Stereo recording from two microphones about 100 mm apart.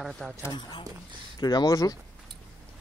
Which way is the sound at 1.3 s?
40° left (ahead or behind).